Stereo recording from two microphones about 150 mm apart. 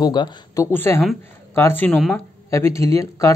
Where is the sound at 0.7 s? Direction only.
15° left (ahead or behind).